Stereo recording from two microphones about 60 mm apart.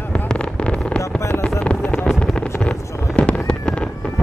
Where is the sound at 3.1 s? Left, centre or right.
Centre.